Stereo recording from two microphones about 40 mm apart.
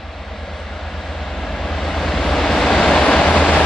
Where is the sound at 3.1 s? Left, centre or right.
Left.